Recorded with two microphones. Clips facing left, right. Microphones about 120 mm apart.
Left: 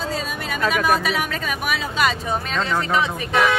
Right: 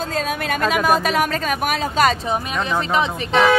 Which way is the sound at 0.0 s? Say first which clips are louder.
Right 4 dB; 50° right (ahead or behind).